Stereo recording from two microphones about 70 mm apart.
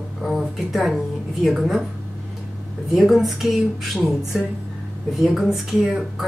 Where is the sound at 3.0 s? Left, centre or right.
Centre.